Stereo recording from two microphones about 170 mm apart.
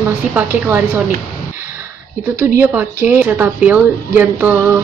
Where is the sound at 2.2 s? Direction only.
15° right (ahead or behind).